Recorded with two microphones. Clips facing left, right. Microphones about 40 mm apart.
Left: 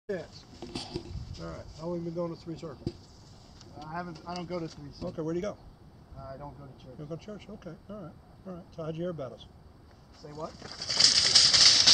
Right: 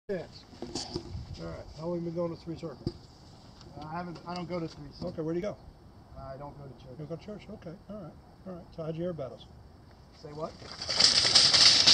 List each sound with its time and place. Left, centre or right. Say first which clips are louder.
0.0 s speech: even; centre
0.7 s clip-clop: even; left
1.3 s speech: right 1 dB; centre
3.7 s speech: even; centre
7.5 s speech: even; centre
10.2 s bird: right 1 dB; centre